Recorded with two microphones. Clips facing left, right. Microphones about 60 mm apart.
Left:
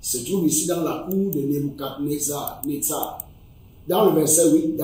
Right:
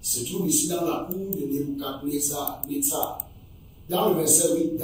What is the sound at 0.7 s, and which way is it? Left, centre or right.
Speech, left.